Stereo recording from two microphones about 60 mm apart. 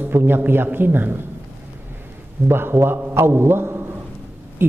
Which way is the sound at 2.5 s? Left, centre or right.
Right.